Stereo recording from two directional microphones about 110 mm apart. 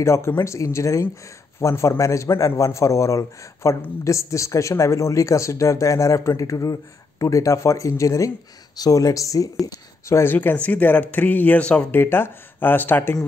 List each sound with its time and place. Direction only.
0.0 s speech: 25° left (ahead or behind)